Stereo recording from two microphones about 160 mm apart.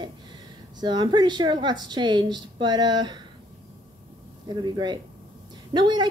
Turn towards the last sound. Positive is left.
turn(degrees=-25)  # may be behind; listen again after turning